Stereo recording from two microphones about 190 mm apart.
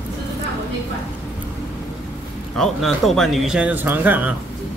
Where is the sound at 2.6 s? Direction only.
Centre (ahead or behind).